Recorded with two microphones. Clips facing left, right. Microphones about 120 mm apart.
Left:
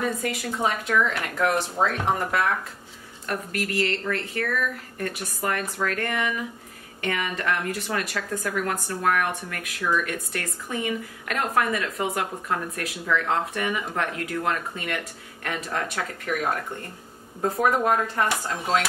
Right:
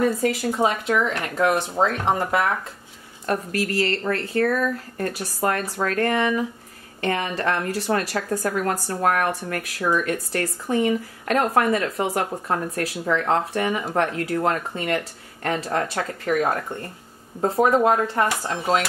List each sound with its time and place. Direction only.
0.0 s a woman's voice: 30° right (ahead or behind)
17.4 s speech: 30° right (ahead or behind)